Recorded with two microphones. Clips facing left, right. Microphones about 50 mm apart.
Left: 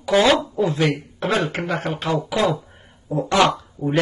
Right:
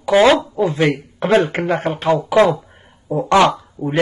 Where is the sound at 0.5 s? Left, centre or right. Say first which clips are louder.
Right 3 dB; centre.